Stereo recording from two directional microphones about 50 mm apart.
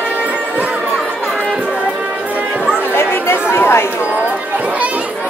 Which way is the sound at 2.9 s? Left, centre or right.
Left.